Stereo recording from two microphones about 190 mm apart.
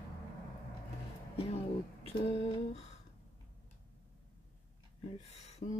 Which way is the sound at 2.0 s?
35° left (ahead or behind).